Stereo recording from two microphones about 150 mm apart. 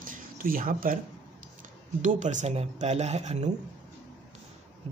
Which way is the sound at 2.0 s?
55° right (ahead or behind).